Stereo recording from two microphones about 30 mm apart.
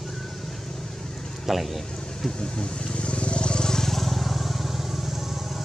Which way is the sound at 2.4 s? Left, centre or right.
Left.